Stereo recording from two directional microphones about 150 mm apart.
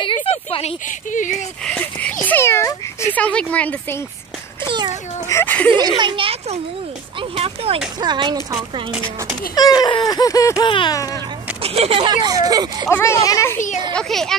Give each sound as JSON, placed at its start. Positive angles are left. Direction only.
{"t": 0.0, "sound": "a sound", "side_deg": 35}
{"t": 0.8, "sound": "speech", "side_deg": 60}
{"t": 1.6, "sound": "speech", "side_deg": 10}
{"t": 4.6, "sound": "a sound", "side_deg": -30}
{"t": 5.3, "sound": "speech", "side_deg": 10}
{"t": 5.8, "sound": "a child's voice", "side_deg": -30}
{"t": 9.6, "sound": "speech", "side_deg": 25}
{"t": 11.6, "sound": "a child's voice", "side_deg": -40}
{"t": 12.9, "sound": "speech", "side_deg": 20}
{"t": 13.9, "sound": "a woman's voice", "side_deg": 5}